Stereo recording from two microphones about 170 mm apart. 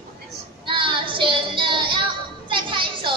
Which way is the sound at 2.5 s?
30° right (ahead or behind).